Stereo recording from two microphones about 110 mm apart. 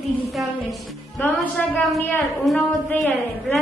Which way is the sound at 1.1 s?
15° left (ahead or behind).